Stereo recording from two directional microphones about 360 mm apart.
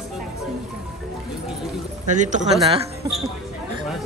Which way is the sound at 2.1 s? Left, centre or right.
Right.